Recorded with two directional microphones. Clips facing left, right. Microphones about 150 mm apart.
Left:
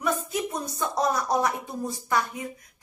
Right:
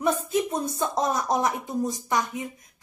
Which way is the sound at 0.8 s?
20° right (ahead or behind).